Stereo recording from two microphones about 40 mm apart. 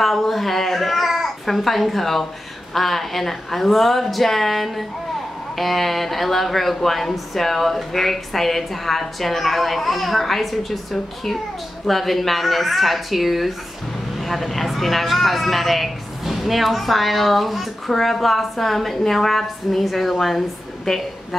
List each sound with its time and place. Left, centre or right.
0.0 s a child's voice: centre